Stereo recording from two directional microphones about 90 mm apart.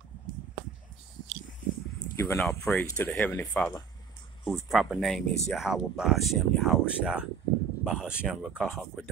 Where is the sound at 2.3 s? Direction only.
10° left (ahead or behind).